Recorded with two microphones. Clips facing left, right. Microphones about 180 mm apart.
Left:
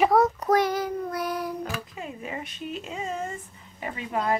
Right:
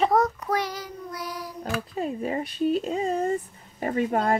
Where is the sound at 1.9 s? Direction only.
35° right (ahead or behind).